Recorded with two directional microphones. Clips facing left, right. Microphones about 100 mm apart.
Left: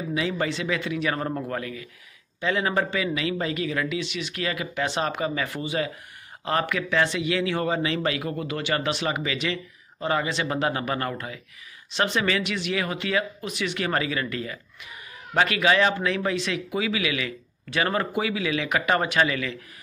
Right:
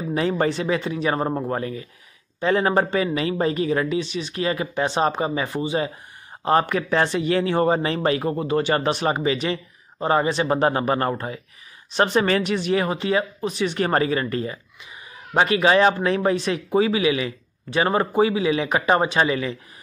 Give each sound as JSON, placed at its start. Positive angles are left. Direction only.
{"t": 0.1, "sound": "speech", "side_deg": -40}